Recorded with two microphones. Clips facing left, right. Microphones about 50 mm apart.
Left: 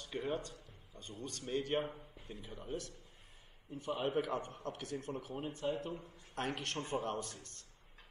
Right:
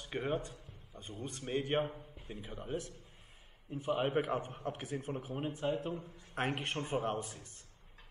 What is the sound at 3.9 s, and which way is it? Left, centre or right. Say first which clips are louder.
Speech: right 3 dB; right.